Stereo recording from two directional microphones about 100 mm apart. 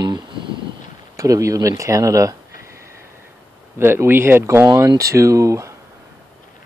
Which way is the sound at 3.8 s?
25° right (ahead or behind).